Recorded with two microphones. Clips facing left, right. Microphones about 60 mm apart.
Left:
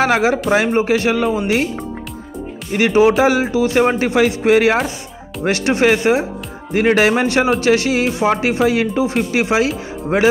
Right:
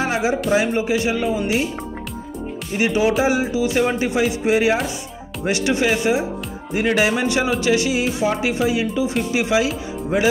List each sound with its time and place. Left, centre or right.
0.0 s speech: left
0.7 s speech: left
2.7 s speech: left
5.4 s speech: left